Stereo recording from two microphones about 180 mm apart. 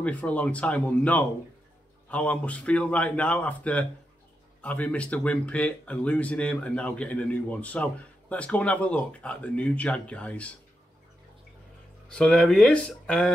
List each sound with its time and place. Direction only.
0.0 s speech: 10° left (ahead or behind)
12.1 s speech: 5° left (ahead or behind)